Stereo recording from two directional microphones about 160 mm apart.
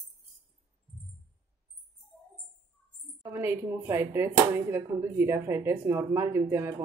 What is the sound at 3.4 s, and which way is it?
Speech, 15° right (ahead or behind).